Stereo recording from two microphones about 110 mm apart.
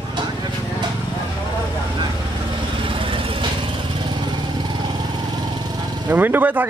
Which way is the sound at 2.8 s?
50° right (ahead or behind).